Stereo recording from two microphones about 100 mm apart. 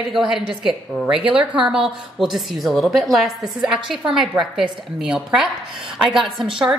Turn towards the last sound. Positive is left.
turn(degrees=0)  # may be behind; listen again after turning